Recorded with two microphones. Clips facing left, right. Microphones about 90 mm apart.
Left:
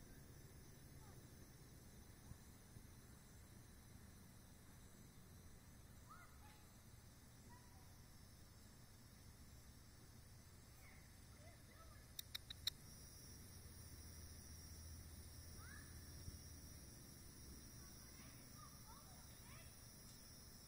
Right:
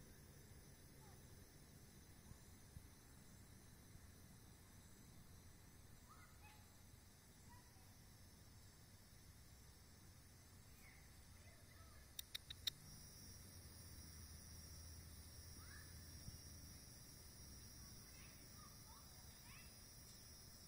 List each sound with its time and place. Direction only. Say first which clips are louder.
12.3 s mouse: even; 15° left (ahead or behind)